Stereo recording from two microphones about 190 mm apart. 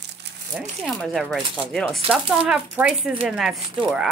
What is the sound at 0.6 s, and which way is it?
Speech, centre (ahead or behind).